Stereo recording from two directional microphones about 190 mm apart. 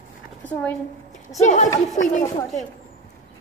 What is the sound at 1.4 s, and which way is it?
Speech, 40° left (ahead or behind).